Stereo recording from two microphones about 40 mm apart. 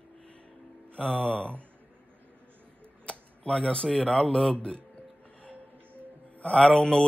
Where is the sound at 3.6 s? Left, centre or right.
Left.